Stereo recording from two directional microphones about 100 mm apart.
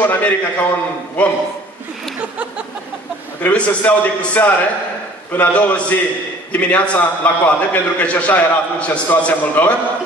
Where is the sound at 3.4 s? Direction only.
15° left (ahead or behind).